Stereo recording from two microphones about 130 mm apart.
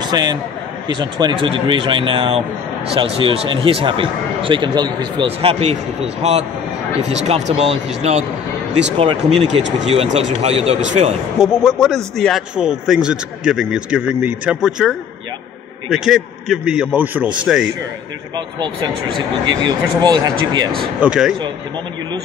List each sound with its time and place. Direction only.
0.0 s a man's voice: 30° right (ahead or behind)
5.2 s speech: 45° right (ahead or behind)
7.1 s speech: 60° right (ahead or behind)
11.3 s a man's voice: centre (ahead or behind)
19.6 s speech: 30° right (ahead or behind)
21.0 s a man's voice: 5° right (ahead or behind)